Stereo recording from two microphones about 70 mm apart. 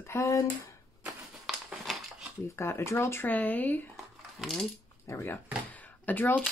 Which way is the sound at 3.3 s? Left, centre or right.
Left.